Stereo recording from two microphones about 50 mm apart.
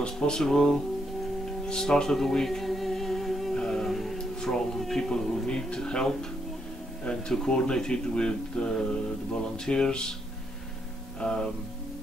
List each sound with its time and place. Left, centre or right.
0.0 s speech: centre
1.7 s music: centre
3.5 s humming: centre
4.7 s speech: centre
11.1 s speech: centre